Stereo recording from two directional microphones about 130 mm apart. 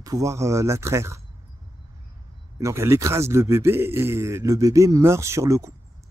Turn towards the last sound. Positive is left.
turn(degrees=-25)  # may be behind; listen again after turning